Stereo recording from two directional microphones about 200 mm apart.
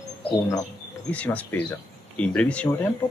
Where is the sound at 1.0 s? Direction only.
5° left (ahead or behind).